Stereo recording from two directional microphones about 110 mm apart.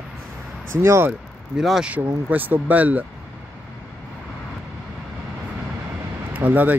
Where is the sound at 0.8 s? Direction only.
25° right (ahead or behind).